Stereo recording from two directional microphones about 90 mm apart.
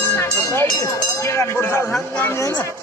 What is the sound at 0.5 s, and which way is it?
Speech, 30° left (ahead or behind).